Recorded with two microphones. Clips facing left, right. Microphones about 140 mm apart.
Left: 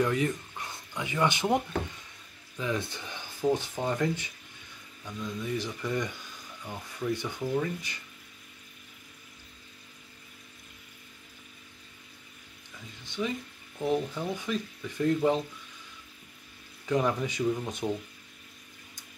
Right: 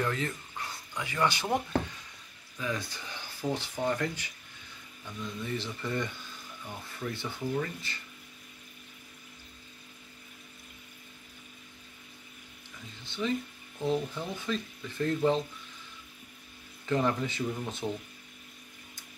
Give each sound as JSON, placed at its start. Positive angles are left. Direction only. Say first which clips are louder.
{"t": 0.0, "sound": "speech", "louder": "left 5 dB", "side_deg": 15}
{"t": 2.6, "sound": "speech", "louder": "left 3 dB", "side_deg": 20}
{"t": 13.0, "sound": "speech", "louder": "right 1 dB", "side_deg": 15}
{"t": 16.8, "sound": "speech", "louder": "left 1 dB", "side_deg": 10}